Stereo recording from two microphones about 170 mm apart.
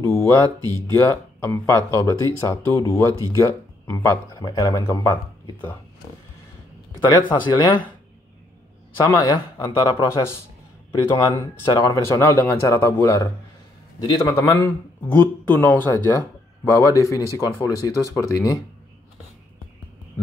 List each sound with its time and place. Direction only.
0.0 s speech: 15° left (ahead or behind)
7.1 s speech: 25° left (ahead or behind)
9.6 s speech: 20° left (ahead or behind)